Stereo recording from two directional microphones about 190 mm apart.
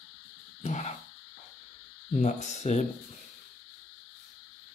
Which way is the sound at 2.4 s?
35° left (ahead or behind).